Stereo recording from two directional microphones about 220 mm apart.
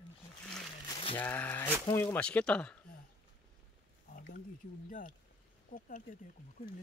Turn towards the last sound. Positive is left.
turn(degrees=35)  # may be behind; listen again after turning